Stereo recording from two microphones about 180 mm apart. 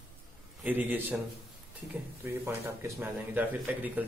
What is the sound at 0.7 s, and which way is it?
Speech, 10° right (ahead or behind).